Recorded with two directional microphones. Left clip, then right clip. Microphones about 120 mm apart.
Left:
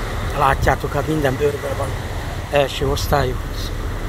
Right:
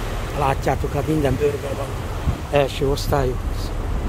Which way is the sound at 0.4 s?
25° right (ahead or behind).